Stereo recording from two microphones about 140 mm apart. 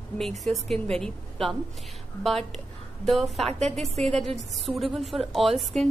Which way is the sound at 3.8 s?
50° right (ahead or behind).